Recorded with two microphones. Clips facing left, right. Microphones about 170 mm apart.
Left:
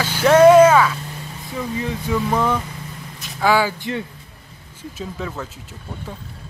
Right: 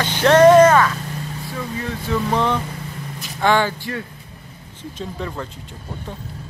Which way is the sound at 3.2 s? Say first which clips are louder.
Even; 5° left (ahead or behind).